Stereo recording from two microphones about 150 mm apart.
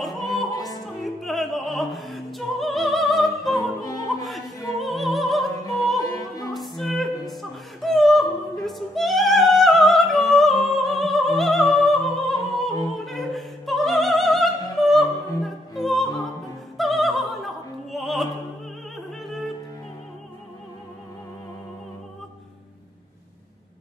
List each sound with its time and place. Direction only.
0.0 s opera: centre (ahead or behind)
0.5 s opera: 25° left (ahead or behind)
1.0 s opera: centre (ahead or behind)
3.8 s opera: 25° left (ahead or behind)
4.2 s opera: centre (ahead or behind)
4.7 s music: centre (ahead or behind)
6.0 s opera: 25° left (ahead or behind)
6.8 s opera: centre (ahead or behind)
19.2 s music: centre (ahead or behind)